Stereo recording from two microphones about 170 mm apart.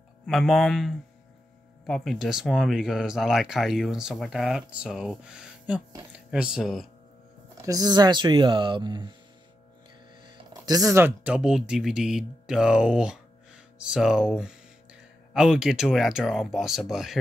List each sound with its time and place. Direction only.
0.3 s speech: centre (ahead or behind)
7.6 s speech: 20° right (ahead or behind)
10.5 s speech: 20° right (ahead or behind); by 17.2 s centre (ahead or behind)